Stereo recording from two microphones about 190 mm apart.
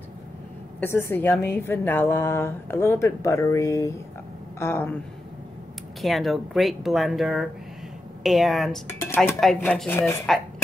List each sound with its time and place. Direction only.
0.7 s a woman's voice: 10° left (ahead or behind)
5.9 s a woman's voice: centre (ahead or behind)